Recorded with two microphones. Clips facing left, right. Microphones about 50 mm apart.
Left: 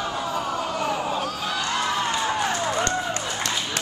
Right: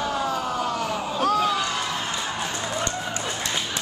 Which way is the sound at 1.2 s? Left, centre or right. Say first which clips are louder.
Right 7 dB; right.